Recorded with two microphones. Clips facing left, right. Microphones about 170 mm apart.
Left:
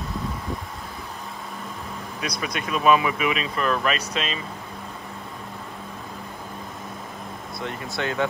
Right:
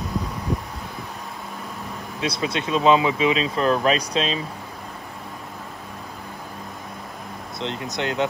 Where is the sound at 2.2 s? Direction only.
25° right (ahead or behind).